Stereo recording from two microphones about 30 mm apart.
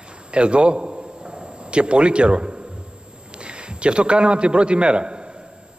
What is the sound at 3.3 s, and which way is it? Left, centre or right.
A man's voice, right.